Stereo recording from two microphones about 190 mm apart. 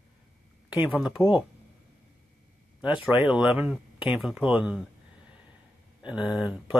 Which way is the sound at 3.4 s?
5° right (ahead or behind).